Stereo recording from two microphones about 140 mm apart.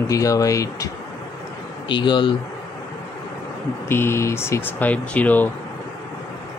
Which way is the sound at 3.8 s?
15° left (ahead or behind).